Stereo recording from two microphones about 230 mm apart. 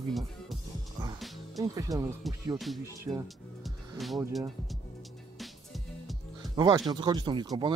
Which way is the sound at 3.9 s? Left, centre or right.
Centre.